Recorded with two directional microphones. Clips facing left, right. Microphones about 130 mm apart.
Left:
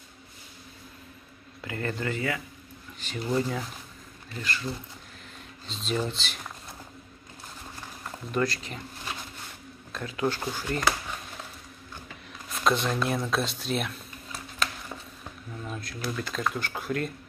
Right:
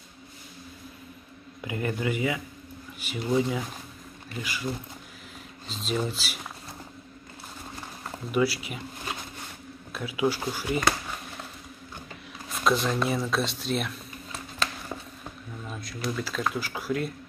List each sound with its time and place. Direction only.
1.6 s speech: 15° right (ahead or behind)
5.7 s speech: centre (ahead or behind)
8.0 s speech: 10° right (ahead or behind)
9.9 s speech: 10° right (ahead or behind)
12.4 s speech: centre (ahead or behind)
15.6 s speech: centre (ahead or behind)